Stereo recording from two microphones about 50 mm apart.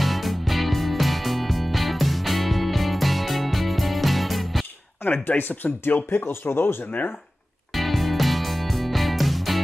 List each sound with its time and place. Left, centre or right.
0.0 s music: centre
5.0 s speech: left
6.9 s speech: left
7.7 s music: centre